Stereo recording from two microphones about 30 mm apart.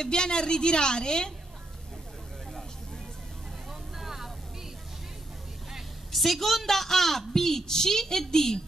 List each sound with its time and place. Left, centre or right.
0.0 s a woman's voice: left
3.9 s vehicle: centre
6.1 s a woman's voice: centre